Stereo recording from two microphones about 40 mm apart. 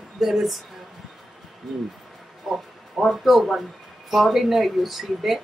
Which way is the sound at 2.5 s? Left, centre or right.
Centre.